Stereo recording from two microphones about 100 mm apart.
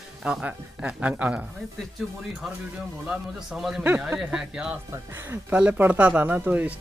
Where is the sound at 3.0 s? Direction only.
5° right (ahead or behind).